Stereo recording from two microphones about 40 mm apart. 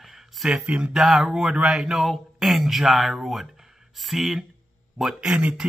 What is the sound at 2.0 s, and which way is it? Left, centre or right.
Speech, centre.